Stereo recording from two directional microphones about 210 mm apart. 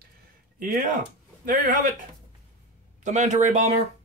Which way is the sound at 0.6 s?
40° right (ahead or behind).